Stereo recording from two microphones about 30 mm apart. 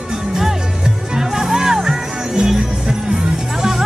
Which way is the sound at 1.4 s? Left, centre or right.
Centre.